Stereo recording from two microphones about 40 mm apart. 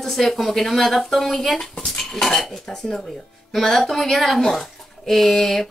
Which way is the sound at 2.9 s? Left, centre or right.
Centre.